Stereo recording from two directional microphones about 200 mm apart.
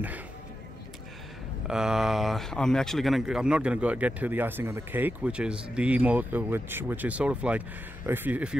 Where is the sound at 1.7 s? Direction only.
5° right (ahead or behind).